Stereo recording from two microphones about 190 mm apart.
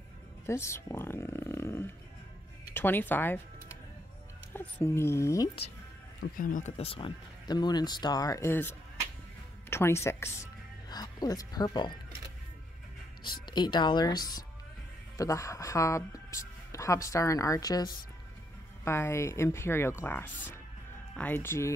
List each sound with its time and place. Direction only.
0.5 s speech: 15° left (ahead or behind)
4.6 s speech: 10° left (ahead or behind)
6.3 s speech: 45° left (ahead or behind); by 12.0 s 25° left (ahead or behind)
13.5 s speech: 25° left (ahead or behind)